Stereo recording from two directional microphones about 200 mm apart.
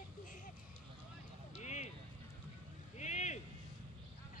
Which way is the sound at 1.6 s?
35° left (ahead or behind).